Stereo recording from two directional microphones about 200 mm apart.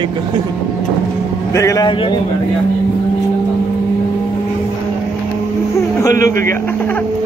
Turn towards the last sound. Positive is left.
turn(degrees=15)  # may be behind; listen again after turning